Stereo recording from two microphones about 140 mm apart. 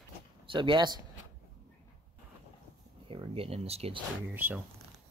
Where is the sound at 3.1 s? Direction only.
45° right (ahead or behind).